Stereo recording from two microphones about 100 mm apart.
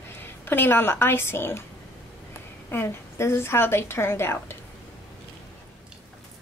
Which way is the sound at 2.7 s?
25° left (ahead or behind).